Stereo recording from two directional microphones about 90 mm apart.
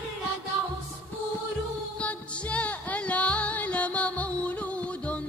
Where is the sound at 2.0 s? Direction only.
15° left (ahead or behind).